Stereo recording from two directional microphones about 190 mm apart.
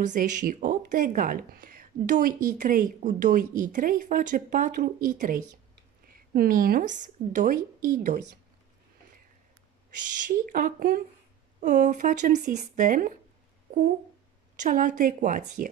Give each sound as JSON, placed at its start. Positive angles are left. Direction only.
{"t": 0.0, "sound": "speech", "side_deg": -40}
{"t": 10.2, "sound": "speech", "side_deg": -45}
{"t": 14.6, "sound": "speech", "side_deg": -45}